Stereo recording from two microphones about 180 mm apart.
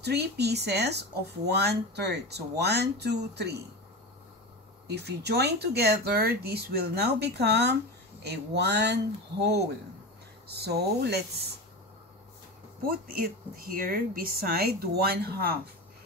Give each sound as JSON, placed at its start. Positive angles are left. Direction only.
{"t": 0.0, "sound": "speech", "side_deg": -65}
{"t": 4.8, "sound": "speech", "side_deg": -65}
{"t": 12.8, "sound": "speech", "side_deg": -55}